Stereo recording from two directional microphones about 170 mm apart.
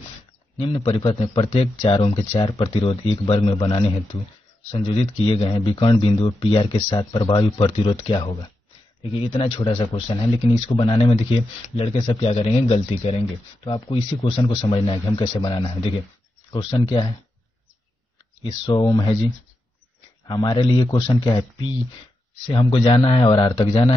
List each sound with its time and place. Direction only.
0.6 s speech: 30° left (ahead or behind)
18.4 s speech: 25° left (ahead or behind)
20.2 s speech: 25° left (ahead or behind)